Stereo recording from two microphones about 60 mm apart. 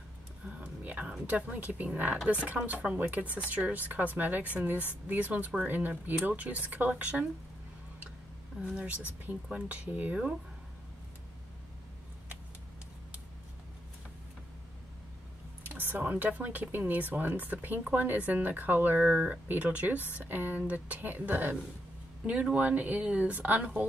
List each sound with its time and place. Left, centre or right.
0.5 s a sound: right
1.2 s speech: right
8.7 s speech: right
15.8 s speech: right
22.2 s speech: right